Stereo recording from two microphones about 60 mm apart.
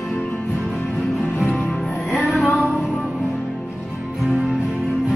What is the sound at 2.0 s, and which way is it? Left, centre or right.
Music, centre.